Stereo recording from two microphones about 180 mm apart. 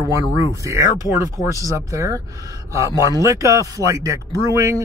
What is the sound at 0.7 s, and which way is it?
Speech, 15° right (ahead or behind).